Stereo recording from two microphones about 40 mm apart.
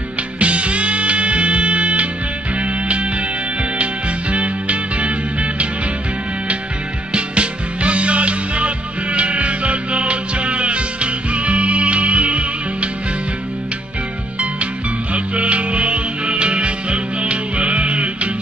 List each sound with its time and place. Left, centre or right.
0.4 s music: right
7.1 s music: right
15.1 s music: right